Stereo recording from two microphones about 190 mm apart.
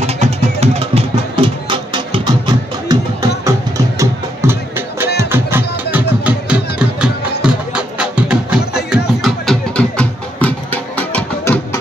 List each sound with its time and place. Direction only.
0.0 s music: 35° right (ahead or behind); by 11.8 s 10° left (ahead or behind)